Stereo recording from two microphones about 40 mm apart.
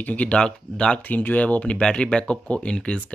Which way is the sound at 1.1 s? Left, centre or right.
Left.